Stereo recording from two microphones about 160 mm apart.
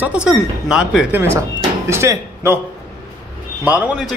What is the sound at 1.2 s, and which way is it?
Speech, 20° right (ahead or behind).